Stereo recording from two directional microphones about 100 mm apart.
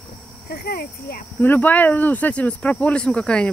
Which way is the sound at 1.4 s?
20° left (ahead or behind).